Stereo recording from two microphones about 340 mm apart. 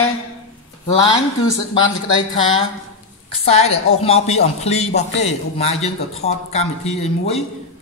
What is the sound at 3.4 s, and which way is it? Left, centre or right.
A man's voice, centre.